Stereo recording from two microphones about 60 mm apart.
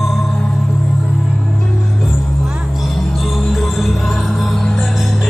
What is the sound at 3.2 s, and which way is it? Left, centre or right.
Music, centre.